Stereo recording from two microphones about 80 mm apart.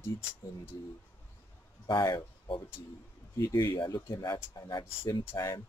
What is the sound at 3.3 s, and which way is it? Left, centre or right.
Speech, left.